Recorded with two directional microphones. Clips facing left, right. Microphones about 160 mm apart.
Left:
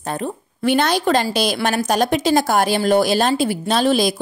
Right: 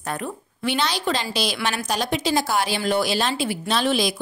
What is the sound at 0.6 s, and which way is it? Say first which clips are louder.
A woman's voice: left 7 dB; 50° left (ahead or behind).